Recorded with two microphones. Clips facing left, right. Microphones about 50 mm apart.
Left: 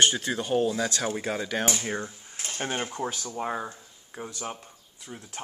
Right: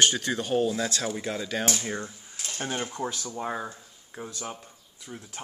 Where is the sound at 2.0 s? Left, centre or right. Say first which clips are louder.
Left 1 dB; left.